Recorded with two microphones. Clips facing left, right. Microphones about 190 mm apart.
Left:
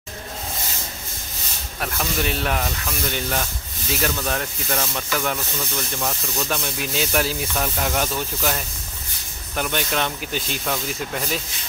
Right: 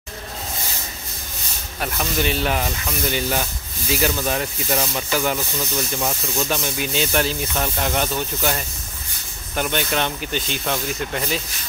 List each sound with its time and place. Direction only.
1.8 s speech: centre (ahead or behind)